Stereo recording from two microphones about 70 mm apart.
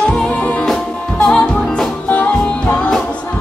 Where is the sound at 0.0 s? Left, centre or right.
Centre.